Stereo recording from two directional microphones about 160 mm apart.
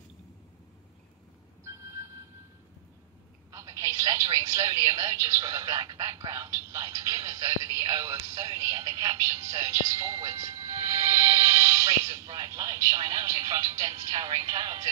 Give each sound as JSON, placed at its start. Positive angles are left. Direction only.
{"t": 1.6, "sound": "music", "side_deg": -15}
{"t": 3.5, "sound": "speech", "side_deg": -20}